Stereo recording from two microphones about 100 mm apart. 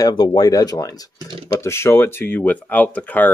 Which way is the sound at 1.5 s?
25° left (ahead or behind).